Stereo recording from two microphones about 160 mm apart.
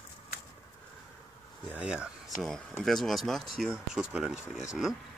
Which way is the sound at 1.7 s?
5° right (ahead or behind).